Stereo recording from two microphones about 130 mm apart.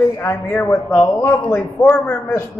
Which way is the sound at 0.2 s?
20° left (ahead or behind).